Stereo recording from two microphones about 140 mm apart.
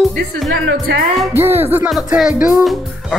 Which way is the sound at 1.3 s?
15° right (ahead or behind).